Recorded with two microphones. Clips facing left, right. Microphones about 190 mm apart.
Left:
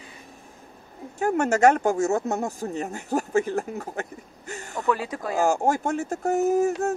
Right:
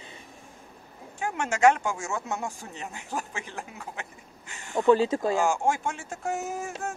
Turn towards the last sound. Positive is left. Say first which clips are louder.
# left 12 dB
turn(degrees=40)  # may be behind; listen again after turning